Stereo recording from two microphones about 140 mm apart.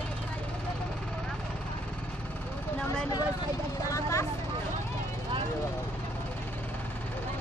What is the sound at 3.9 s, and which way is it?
Vehicle, 20° left (ahead or behind).